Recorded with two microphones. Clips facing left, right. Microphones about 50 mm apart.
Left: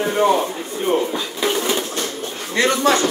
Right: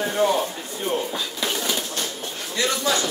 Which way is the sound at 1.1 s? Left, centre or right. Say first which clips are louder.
Left 6 dB; left.